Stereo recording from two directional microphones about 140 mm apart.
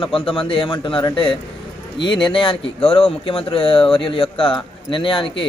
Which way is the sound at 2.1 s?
35° left (ahead or behind).